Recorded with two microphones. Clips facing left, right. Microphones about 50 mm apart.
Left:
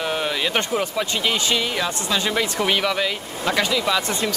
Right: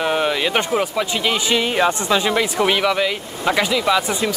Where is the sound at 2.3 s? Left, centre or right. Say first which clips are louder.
Right 3 dB; centre.